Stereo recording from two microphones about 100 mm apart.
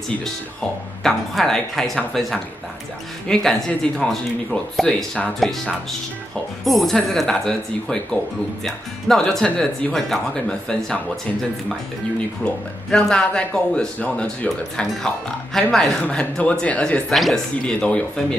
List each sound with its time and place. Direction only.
1.0 s speech: 5° left (ahead or behind)
12.9 s speech: 10° left (ahead or behind)
17.1 s speech: centre (ahead or behind)